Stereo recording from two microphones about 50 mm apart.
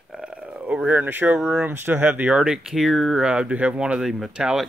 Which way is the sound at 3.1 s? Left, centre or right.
Centre.